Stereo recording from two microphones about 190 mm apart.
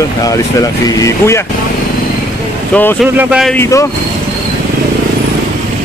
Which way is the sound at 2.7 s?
10° left (ahead or behind).